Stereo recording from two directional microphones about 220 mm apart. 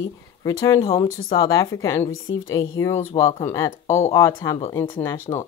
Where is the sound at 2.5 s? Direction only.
15° left (ahead or behind).